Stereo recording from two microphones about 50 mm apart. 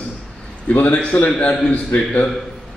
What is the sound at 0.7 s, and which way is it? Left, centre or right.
Speech, left.